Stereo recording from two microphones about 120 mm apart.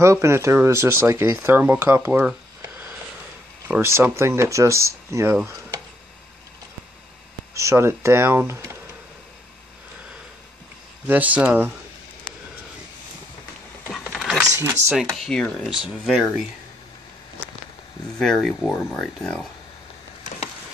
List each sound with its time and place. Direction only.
0.0 s speech: 25° right (ahead or behind)
3.6 s speech: 20° right (ahead or behind)
7.5 s speech: 25° right (ahead or behind)
11.1 s speech: 15° right (ahead or behind)
13.9 s a sound: centre (ahead or behind)
15.1 s speech: 5° left (ahead or behind)
18.2 s speech: 5° left (ahead or behind)